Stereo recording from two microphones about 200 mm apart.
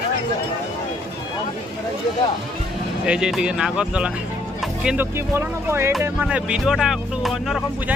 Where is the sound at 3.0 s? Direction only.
5° right (ahead or behind).